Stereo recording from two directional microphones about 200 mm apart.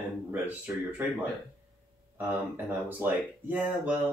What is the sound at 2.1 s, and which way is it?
Speech, 10° right (ahead or behind).